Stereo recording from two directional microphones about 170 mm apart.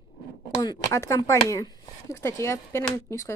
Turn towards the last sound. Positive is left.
turn(degrees=15)  # may be behind; listen again after turning